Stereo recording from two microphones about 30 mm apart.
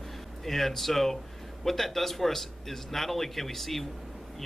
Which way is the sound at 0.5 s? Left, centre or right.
Centre.